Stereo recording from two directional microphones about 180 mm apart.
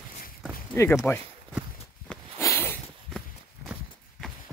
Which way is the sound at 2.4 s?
15° left (ahead or behind).